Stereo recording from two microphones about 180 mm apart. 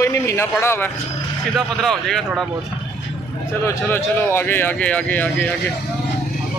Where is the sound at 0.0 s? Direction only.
15° left (ahead or behind).